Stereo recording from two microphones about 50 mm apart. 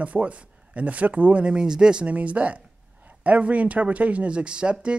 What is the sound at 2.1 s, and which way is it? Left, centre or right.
Speech, right.